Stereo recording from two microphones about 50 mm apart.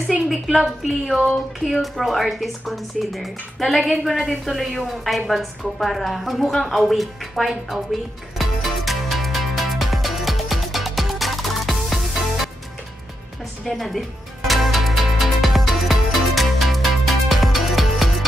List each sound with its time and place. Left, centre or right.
0.3 s a woman's voice: centre
8.4 s music: centre
13.7 s music: centre